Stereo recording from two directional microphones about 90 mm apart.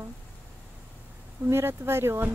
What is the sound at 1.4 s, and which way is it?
Speech, 25° right (ahead or behind).